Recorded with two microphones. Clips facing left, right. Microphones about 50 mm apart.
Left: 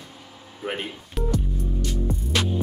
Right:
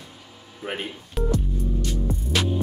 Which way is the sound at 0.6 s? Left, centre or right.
Centre.